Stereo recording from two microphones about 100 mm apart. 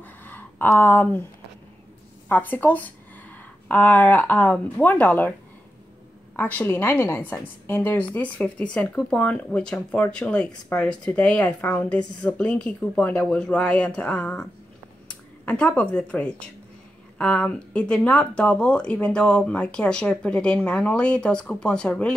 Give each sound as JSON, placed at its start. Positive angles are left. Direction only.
{"t": 0.0, "sound": "a sound", "side_deg": 20}
{"t": 0.7, "sound": "speech", "side_deg": 20}
{"t": 2.2, "sound": "speech", "side_deg": 20}
{"t": 6.3, "sound": "a woman's voice", "side_deg": 20}
{"t": 15.4, "sound": "speech", "side_deg": 15}